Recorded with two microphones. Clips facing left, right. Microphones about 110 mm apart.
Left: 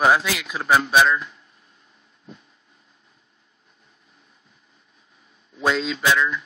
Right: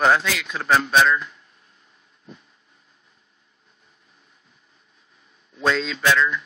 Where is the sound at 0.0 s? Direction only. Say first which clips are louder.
Even; 5° left (ahead or behind).